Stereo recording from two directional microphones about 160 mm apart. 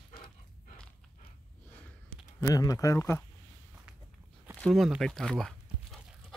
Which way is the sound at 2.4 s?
20° left (ahead or behind).